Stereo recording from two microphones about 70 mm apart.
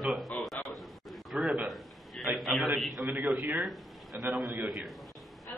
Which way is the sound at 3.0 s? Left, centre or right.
Right.